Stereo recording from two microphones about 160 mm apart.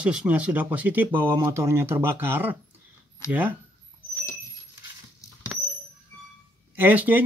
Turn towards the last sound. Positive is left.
turn(degrees=-10)  # may be behind; listen again after turning